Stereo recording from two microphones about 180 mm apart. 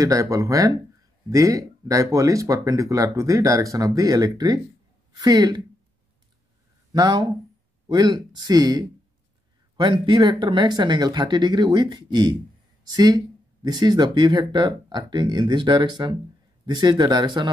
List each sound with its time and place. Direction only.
0.0 s speech: 20° right (ahead or behind)
6.9 s speech: 25° right (ahead or behind)